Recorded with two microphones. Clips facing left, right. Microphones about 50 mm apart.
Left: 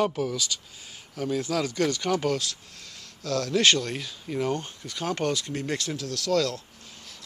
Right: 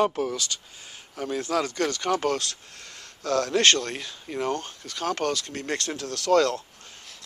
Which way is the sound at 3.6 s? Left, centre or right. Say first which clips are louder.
Left 1 dB; centre.